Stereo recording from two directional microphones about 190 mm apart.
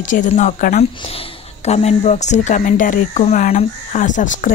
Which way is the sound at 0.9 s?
30° left (ahead or behind).